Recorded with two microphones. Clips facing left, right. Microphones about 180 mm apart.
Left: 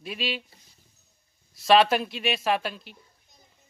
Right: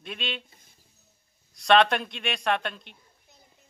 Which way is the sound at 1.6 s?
5° left (ahead or behind).